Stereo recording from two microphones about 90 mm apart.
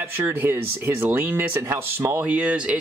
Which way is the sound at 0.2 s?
25° right (ahead or behind).